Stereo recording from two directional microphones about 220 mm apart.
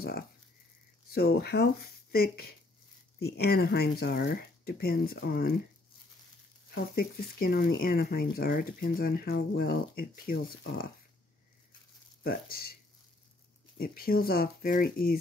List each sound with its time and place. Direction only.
1.1 s speech: 45° left (ahead or behind)
6.7 s speech: 45° left (ahead or behind)
12.2 s speech: 40° left (ahead or behind)
13.7 s speech: 40° left (ahead or behind)